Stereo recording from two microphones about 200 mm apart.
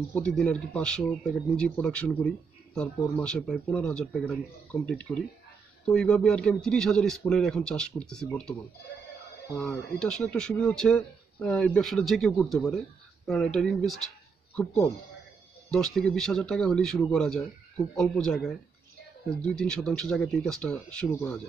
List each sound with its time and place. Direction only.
0.1 s speech: 5° left (ahead or behind)
9.6 s speech: 5° left (ahead or behind)
15.7 s speech: centre (ahead or behind)